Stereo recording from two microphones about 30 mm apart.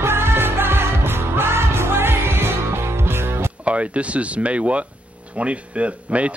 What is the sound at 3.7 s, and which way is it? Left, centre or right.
A man's voice, right.